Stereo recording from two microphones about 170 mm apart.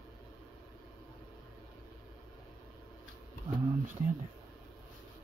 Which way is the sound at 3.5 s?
25° right (ahead or behind).